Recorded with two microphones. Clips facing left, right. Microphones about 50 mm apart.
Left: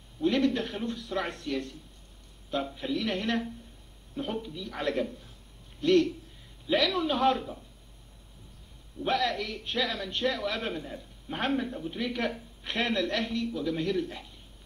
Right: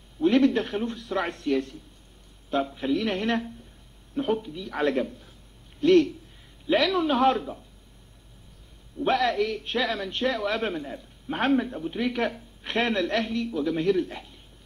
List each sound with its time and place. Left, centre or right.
0.2 s a man's voice: right
2.8 s a man's voice: right
9.0 s a man's voice: right
10.8 s a man's voice: centre
11.3 s a woman's voice: right
11.6 s a woman's voice: centre